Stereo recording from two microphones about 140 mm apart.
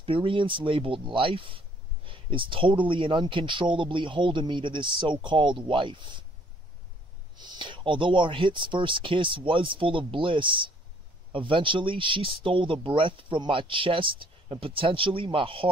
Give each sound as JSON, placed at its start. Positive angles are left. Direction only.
{"t": 0.0, "sound": "speech", "side_deg": -40}
{"t": 7.3, "sound": "speech", "side_deg": -35}